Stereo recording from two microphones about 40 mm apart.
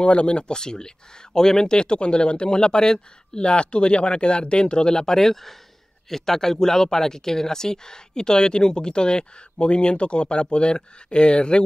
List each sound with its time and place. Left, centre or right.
0.0 s speech: left